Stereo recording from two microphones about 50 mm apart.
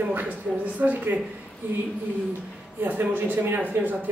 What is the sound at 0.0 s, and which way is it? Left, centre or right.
Speech, right.